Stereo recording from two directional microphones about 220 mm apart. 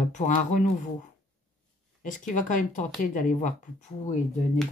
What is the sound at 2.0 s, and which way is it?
Speech, 35° left (ahead or behind).